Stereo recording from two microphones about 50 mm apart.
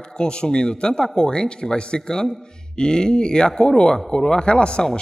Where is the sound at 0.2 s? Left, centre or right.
Centre.